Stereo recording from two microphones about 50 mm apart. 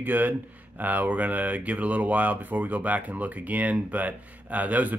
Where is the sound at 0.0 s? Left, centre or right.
Right.